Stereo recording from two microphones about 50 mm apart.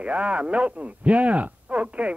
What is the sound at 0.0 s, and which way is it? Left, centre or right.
Speech, right.